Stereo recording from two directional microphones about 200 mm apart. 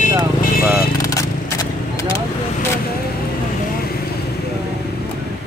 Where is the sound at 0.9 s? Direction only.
15° left (ahead or behind).